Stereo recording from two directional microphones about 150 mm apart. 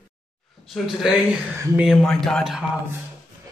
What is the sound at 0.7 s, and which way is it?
A man's voice, centre (ahead or behind).